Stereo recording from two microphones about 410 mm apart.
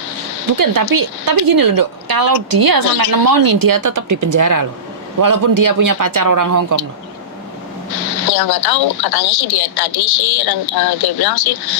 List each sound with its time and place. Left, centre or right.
0.5 s a woman's voice: right
7.9 s a woman's voice: left